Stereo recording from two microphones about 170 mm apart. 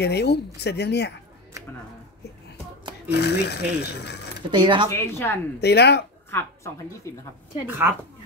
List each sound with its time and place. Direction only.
0.0 s speech: 75° left (ahead or behind)
3.1 s speech: 75° left (ahead or behind)
4.5 s speech: 25° right (ahead or behind)
4.8 s a woman's voice: 15° left (ahead or behind)
5.6 s speech: 75° left (ahead or behind)
7.6 s speech: 10° right (ahead or behind)